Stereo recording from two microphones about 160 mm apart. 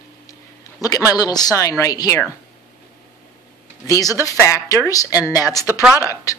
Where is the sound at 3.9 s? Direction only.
20° left (ahead or behind).